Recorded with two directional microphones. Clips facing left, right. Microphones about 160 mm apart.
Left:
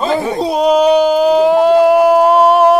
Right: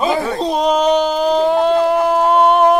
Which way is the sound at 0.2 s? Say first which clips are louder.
Left 3 dB; 15° left (ahead or behind).